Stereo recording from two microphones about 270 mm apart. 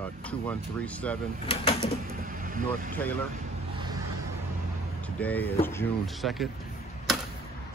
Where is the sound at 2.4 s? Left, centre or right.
Right.